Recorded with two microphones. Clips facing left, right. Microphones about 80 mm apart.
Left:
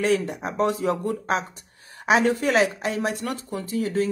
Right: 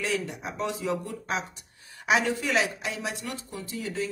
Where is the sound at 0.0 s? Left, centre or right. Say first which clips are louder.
Left 8 dB; left.